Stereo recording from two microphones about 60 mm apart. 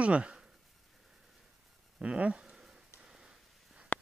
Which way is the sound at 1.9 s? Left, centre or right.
Centre.